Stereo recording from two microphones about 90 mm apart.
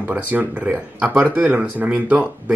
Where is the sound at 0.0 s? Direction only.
20° right (ahead or behind).